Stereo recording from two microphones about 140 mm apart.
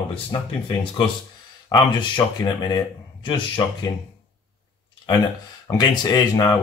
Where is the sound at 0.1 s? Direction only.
35° left (ahead or behind).